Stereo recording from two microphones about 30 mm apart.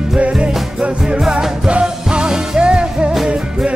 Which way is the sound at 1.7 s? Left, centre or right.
Right.